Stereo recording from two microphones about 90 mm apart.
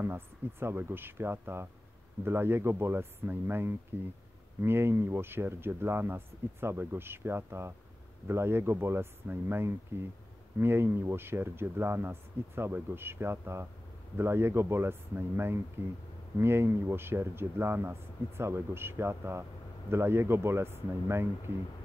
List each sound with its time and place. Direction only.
0.0 s speech: 25° right (ahead or behind)